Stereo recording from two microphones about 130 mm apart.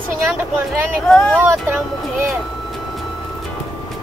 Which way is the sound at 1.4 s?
15° right (ahead or behind).